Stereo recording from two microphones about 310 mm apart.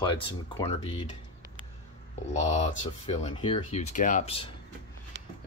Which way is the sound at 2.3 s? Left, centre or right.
Left.